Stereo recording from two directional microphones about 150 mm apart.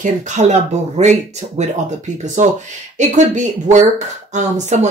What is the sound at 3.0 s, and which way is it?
Speech, 50° right (ahead or behind).